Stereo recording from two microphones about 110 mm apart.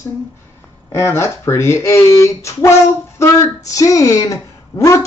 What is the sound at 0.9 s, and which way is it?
A man's voice, 25° left (ahead or behind).